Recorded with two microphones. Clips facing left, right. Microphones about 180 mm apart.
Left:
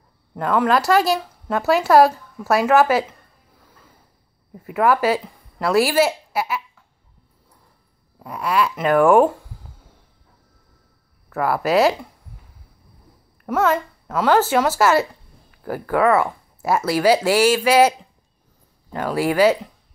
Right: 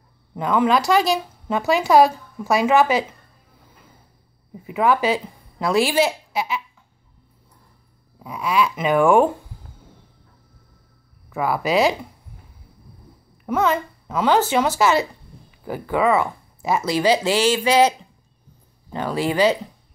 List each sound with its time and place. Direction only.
0.3 s speech: 5° left (ahead or behind)
4.6 s a woman's voice: 5° left (ahead or behind)
8.4 s speech: 5° left (ahead or behind)
11.3 s speech: 5° left (ahead or behind)
13.5 s speech: 5° left (ahead or behind)
18.9 s speech: 10° left (ahead or behind)